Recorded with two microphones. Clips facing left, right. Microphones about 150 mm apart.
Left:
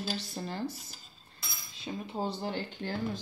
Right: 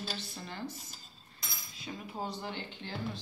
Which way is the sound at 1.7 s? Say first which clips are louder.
Left 5 dB; 25° left (ahead or behind).